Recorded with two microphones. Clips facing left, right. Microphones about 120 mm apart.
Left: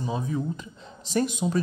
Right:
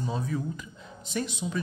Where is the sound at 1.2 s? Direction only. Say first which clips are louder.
Left 7 dB; 45° left (ahead or behind).